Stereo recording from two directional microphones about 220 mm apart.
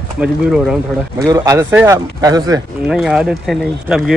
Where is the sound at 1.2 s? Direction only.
15° right (ahead or behind).